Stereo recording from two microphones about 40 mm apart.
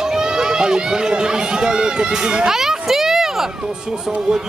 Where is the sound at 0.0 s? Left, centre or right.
Centre.